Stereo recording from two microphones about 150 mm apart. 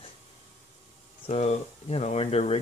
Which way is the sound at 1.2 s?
45° left (ahead or behind).